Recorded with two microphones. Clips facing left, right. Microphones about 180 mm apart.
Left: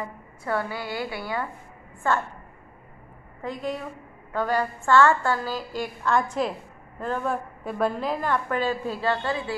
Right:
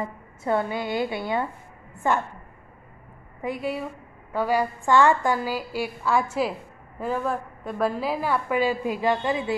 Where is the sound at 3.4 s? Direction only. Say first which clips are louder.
Right 2 dB; 10° right (ahead or behind).